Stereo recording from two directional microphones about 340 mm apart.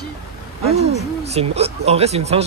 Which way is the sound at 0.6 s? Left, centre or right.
Centre.